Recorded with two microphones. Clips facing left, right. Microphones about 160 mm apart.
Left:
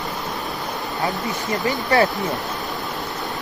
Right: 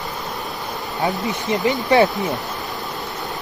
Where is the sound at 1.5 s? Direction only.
20° right (ahead or behind).